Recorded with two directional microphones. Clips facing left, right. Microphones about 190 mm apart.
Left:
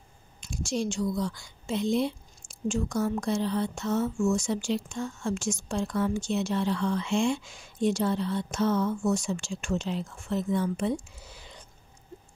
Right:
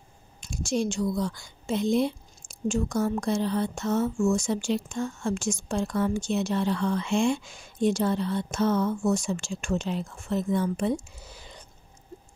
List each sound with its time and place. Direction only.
0.4 s speech: 45° right (ahead or behind)